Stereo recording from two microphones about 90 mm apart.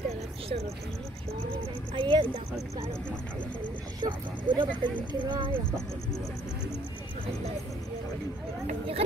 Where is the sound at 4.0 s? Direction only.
60° right (ahead or behind); by 5.6 s 75° right (ahead or behind).